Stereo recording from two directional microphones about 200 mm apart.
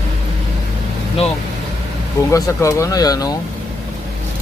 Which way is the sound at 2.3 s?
15° left (ahead or behind).